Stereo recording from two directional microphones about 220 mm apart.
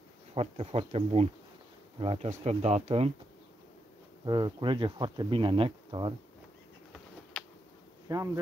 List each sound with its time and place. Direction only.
0.3 s speech: 25° right (ahead or behind)
4.3 s speech: 20° right (ahead or behind)
8.1 s speech: 15° right (ahead or behind)